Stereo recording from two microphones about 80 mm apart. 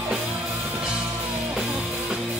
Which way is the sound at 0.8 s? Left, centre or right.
Centre.